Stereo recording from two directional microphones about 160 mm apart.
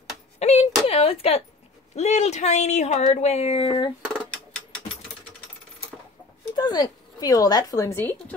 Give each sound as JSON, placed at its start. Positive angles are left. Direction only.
{"t": 0.4, "sound": "a sound", "side_deg": 40}
{"t": 0.8, "sound": "speech", "side_deg": 40}
{"t": 3.6, "sound": "speech", "side_deg": 30}
{"t": 6.5, "sound": "a woman's voice", "side_deg": 25}